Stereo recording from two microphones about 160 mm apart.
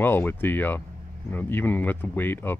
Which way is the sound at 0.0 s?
10° left (ahead or behind).